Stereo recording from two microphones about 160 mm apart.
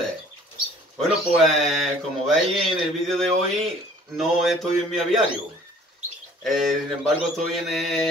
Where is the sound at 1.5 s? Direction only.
Centre (ahead or behind).